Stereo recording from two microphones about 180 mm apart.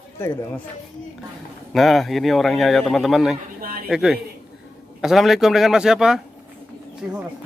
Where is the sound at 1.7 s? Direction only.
Centre (ahead or behind).